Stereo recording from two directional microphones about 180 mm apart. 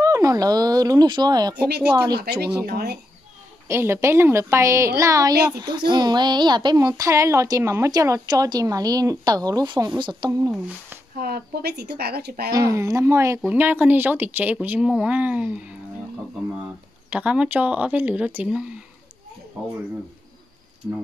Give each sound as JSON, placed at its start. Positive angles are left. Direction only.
{"t": 0.0, "sound": "speech", "side_deg": -20}
{"t": 2.4, "sound": "speech", "side_deg": -60}
{"t": 3.6, "sound": "a woman's voice", "side_deg": -15}
{"t": 11.1, "sound": "speech", "side_deg": -60}
{"t": 12.5, "sound": "speech", "side_deg": -20}
{"t": 17.1, "sound": "speech", "side_deg": -5}
{"t": 20.8, "sound": "speech", "side_deg": -5}